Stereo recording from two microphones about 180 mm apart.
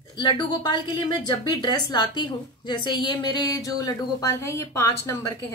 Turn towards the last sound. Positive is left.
turn(degrees=15)  # may be behind; listen again after turning